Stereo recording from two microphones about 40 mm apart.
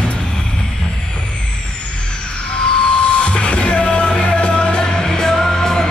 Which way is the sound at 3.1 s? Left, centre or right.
Left.